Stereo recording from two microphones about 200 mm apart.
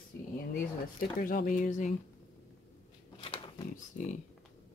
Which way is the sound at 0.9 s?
45° left (ahead or behind).